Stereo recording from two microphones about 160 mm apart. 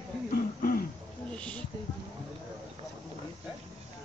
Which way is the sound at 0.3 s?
65° left (ahead or behind).